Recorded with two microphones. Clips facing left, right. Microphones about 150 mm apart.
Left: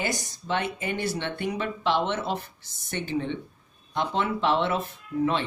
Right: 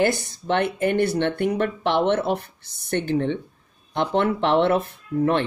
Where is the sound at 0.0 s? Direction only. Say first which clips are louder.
Right 9 dB; 60° right (ahead or behind).